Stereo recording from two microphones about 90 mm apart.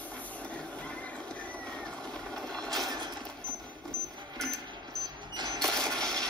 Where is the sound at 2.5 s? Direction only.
5° left (ahead or behind).